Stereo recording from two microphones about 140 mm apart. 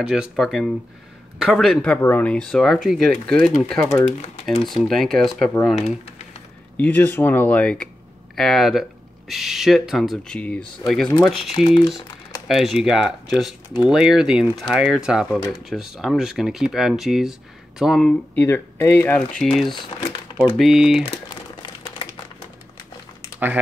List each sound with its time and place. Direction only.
0.0 s speech: 5° right (ahead or behind)
6.8 s speech: 10° left (ahead or behind)
11.5 s speech: 40° left (ahead or behind)
12.4 s speech: centre (ahead or behind)